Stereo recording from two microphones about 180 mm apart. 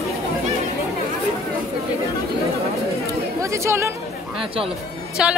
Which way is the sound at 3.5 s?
15° right (ahead or behind).